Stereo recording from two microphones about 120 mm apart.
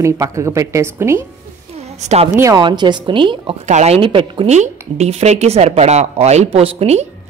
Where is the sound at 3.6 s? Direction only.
75° right (ahead or behind).